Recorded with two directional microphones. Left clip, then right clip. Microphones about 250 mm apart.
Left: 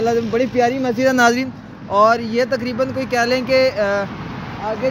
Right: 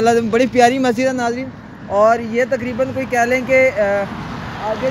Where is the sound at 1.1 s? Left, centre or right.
Left.